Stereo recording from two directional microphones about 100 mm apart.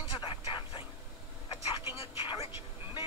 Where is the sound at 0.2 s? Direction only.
55° left (ahead or behind).